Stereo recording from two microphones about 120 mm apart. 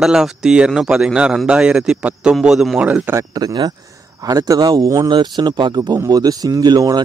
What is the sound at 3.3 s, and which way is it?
Speech, 35° right (ahead or behind).